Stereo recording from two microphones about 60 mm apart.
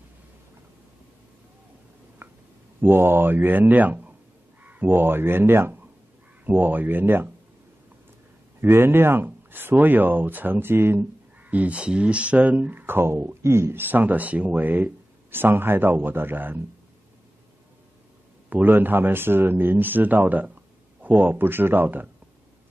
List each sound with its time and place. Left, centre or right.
2.2 s a sound: right
2.8 s speech: right
8.5 s speech: right
11.4 s speech: right
18.5 s speech: right